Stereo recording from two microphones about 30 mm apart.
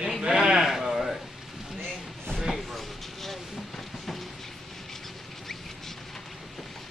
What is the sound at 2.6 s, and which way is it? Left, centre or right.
Speech, centre.